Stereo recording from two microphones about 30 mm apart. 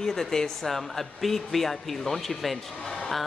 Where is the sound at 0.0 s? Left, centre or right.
Centre.